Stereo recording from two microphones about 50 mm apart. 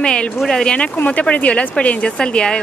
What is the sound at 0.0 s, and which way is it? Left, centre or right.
Speech, centre.